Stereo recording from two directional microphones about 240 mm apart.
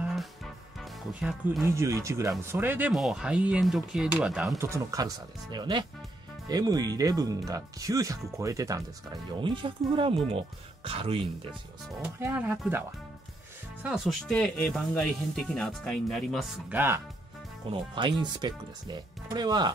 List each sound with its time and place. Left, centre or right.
0.0 s music: centre
1.2 s speech: centre; by 11.1 s right
12.0 s speech: centre
13.8 s speech: centre
17.6 s speech: centre